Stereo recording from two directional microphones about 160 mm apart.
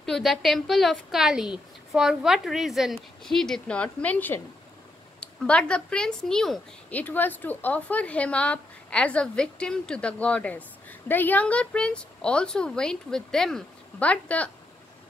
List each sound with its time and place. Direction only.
0.0 s a woman's voice: centre (ahead or behind)